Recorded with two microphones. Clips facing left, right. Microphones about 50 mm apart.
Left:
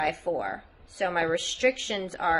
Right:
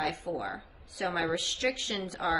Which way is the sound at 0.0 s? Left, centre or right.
Left.